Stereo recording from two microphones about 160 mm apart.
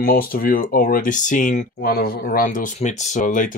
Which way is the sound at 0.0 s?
65° left (ahead or behind).